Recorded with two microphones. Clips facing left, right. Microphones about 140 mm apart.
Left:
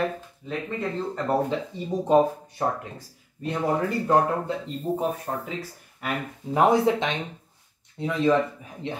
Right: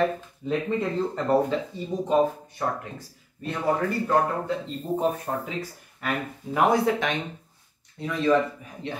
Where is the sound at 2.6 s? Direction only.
25° left (ahead or behind).